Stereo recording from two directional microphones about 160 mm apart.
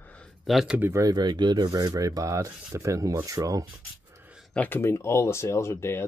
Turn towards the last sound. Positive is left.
turn(degrees=15)  # may be behind; listen again after turning